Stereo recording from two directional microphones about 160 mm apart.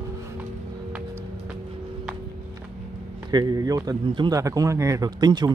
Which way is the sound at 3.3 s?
25° right (ahead or behind).